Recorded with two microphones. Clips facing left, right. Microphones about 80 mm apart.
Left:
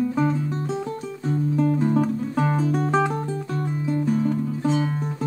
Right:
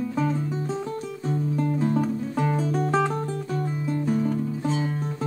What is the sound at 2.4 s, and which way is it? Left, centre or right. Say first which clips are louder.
Music: left 2 dB; left.